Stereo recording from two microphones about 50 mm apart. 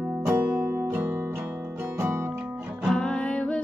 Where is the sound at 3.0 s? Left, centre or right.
Left.